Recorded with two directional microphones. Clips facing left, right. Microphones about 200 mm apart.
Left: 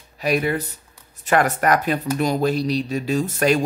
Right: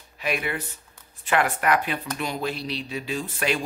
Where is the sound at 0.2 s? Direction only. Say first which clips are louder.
Left 7 dB; 40° left (ahead or behind).